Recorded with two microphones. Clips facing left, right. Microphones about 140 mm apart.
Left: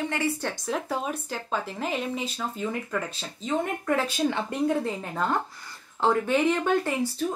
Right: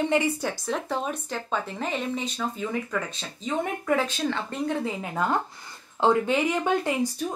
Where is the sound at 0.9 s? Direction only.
5° left (ahead or behind).